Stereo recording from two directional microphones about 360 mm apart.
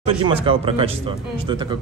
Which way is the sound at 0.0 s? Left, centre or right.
Centre.